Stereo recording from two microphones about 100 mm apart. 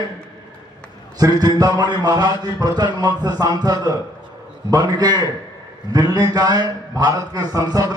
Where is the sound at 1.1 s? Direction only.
40° right (ahead or behind).